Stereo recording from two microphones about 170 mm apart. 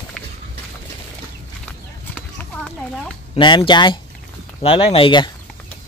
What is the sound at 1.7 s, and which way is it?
Clip-clop, 10° left (ahead or behind).